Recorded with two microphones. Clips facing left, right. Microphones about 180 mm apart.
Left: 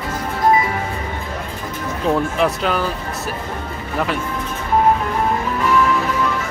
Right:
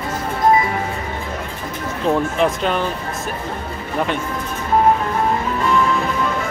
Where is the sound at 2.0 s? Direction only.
Centre (ahead or behind).